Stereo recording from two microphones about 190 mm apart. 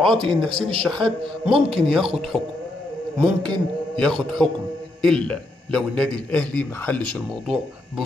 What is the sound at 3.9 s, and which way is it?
A man's voice, 5° left (ahead or behind).